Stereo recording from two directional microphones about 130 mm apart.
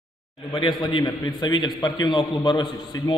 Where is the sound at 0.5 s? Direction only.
35° left (ahead or behind).